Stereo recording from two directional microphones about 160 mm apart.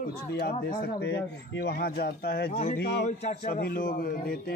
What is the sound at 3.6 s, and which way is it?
Speech, 65° left (ahead or behind).